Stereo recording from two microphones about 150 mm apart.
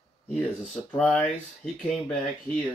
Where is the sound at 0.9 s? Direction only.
Centre (ahead or behind).